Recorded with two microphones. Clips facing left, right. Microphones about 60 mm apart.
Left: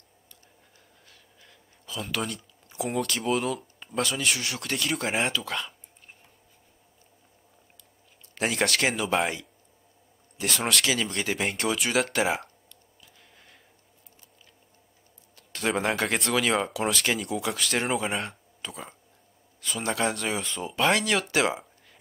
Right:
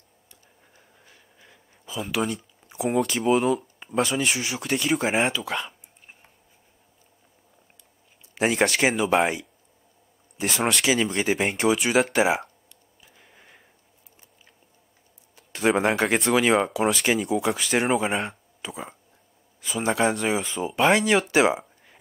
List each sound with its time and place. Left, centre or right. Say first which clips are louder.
1.0 s a sound: right 2 dB; centre
2.8 s speech: right 5 dB; centre
8.4 s speech: right 4 dB; centre
10.4 s speech: right 3 dB; centre
13.2 s a sound: right 4 dB; centre
15.3 s speech: right 6 dB; centre